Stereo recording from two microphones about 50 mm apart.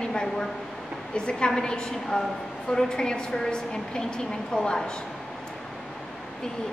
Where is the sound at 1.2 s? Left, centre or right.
Centre.